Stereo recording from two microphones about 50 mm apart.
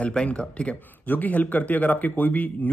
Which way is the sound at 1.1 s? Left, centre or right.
Left.